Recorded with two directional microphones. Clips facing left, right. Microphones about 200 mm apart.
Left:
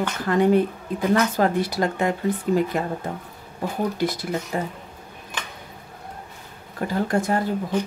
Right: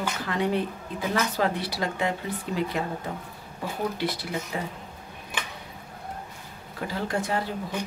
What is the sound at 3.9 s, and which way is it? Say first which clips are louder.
Speech: left 5 dB; 45° left (ahead or behind).